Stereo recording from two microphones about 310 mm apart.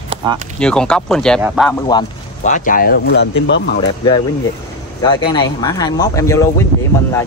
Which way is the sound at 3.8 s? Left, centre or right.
Centre.